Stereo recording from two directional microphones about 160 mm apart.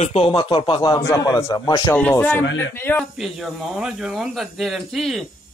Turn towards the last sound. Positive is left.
turn(degrees=0)  # may be behind; listen again after turning